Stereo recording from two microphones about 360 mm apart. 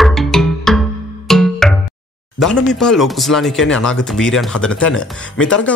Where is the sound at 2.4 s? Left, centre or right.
Centre.